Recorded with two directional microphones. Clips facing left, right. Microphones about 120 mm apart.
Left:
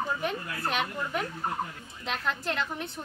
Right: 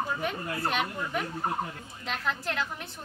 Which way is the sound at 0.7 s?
Centre (ahead or behind).